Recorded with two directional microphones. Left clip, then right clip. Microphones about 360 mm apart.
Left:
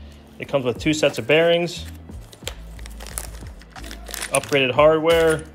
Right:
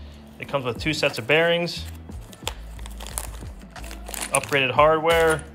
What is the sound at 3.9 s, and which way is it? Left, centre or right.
Speech, centre.